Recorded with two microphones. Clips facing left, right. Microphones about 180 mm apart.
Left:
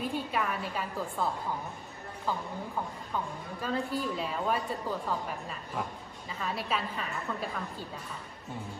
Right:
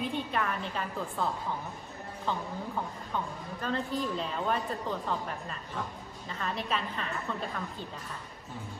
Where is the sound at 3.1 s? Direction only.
5° left (ahead or behind).